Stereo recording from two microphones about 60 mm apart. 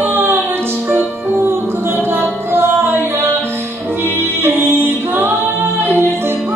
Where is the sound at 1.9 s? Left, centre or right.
Right.